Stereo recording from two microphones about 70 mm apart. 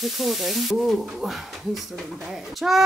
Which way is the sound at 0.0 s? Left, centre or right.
Centre.